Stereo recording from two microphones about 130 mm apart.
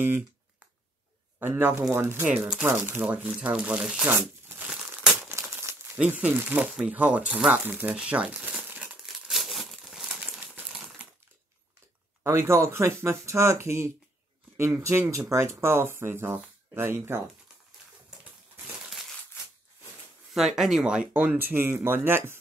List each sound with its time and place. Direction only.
1.4 s speech: 15° right (ahead or behind)
4.1 s tearing: 15° right (ahead or behind)
4.6 s crumpling: 5° right (ahead or behind)
5.5 s crumpling: 20° right (ahead or behind)
12.2 s speech: 20° right (ahead or behind)
20.3 s speech: 5° right (ahead or behind)